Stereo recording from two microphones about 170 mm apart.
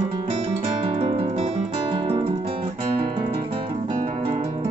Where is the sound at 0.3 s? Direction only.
35° right (ahead or behind).